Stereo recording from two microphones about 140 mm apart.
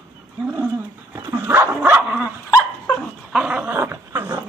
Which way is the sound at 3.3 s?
5° right (ahead or behind).